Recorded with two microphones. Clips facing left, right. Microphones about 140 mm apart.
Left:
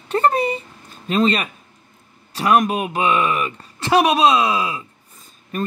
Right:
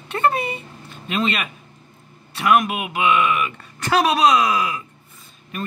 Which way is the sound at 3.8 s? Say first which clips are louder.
Left 2 dB; 25° left (ahead or behind).